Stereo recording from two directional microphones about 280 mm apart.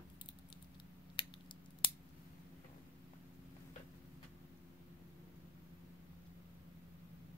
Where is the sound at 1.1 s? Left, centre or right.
Centre.